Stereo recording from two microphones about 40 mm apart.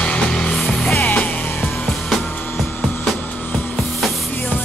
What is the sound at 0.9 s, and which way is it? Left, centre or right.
Music, left.